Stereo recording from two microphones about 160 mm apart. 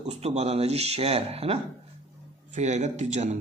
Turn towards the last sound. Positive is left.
turn(degrees=-45)  # may be behind; listen again after turning